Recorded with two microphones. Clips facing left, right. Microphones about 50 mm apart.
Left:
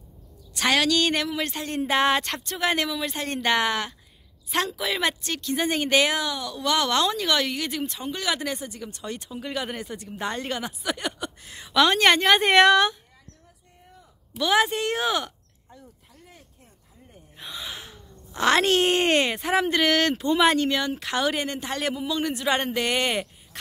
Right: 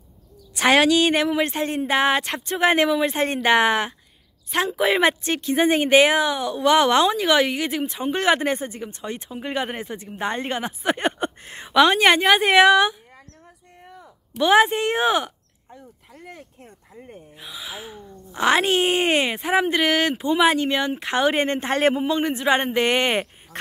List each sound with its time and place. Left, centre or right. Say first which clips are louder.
0.6 s speech: right 5 dB; right
1.7 s a woman's voice: left 1 dB; centre
2.5 s speech: right 7 dB; right
8.1 s speech: right 9 dB; right
11.7 s a woman's voice: right 3 dB; centre
14.3 s speech: right 5 dB; right
16.1 s a sound: right 10 dB; right
17.4 s speech: right 1 dB; centre; by 23.6 s right